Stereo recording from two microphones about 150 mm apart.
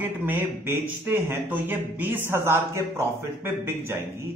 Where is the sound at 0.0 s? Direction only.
15° right (ahead or behind).